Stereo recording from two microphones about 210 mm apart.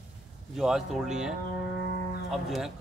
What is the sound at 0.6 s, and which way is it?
Speech, centre (ahead or behind).